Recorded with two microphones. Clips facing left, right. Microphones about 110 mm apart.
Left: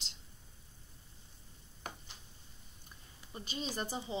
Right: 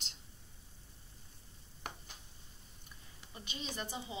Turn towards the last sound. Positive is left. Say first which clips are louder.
# left 4 dB
turn(degrees=35)  # may be behind; listen again after turning